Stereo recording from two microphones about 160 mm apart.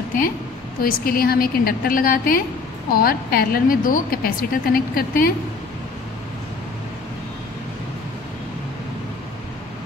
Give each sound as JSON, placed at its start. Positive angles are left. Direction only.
{"t": 0.8, "sound": "a woman's voice", "side_deg": 65}